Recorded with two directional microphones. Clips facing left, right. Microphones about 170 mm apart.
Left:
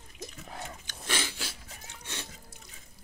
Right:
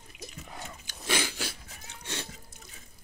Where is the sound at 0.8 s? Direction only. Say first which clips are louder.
Right 5 dB; 10° right (ahead or behind).